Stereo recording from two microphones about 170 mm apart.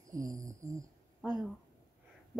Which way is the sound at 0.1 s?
20° right (ahead or behind).